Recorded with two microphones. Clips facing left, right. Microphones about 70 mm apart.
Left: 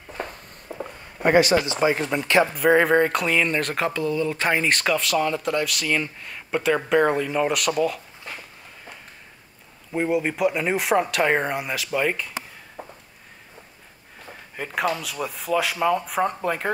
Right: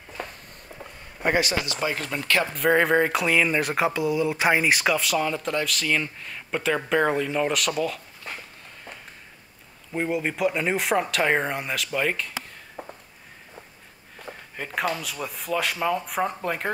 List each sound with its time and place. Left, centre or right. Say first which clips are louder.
0.2 s a sound: left 3 dB; left
1.7 s speech: left 6 dB; left
2.5 s speech: even; centre
9.9 s speech: left 3 dB; centre
14.6 s speech: left 2 dB; centre